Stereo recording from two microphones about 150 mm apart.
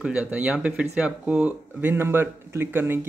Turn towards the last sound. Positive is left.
turn(degrees=-15)  # may be behind; listen again after turning